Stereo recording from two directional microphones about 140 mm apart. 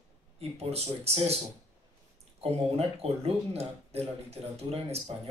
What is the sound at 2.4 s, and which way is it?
Speech, 45° right (ahead or behind).